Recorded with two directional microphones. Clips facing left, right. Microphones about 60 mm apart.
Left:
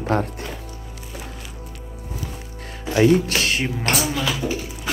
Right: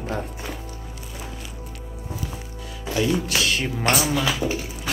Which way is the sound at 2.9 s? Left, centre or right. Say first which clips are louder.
Left 6 dB; left.